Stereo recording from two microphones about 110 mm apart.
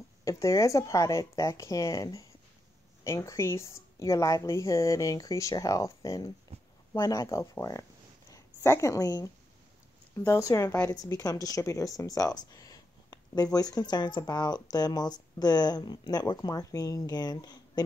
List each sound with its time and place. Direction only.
0.2 s a woman's voice: 30° left (ahead or behind)